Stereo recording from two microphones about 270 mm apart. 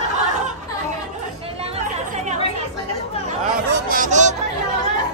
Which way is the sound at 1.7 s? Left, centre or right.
Right.